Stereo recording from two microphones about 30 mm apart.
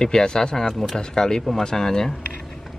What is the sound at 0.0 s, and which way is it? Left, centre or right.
Speech, left.